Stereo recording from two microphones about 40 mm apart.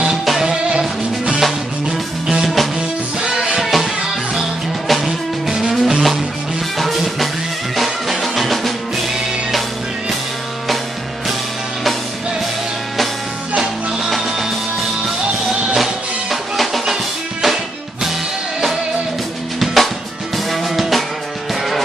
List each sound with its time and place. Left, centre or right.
0.5 s music: right
2.4 s music: centre
3.2 s music: centre
3.6 s music: centre
15.7 s music: centre
19.6 s music: centre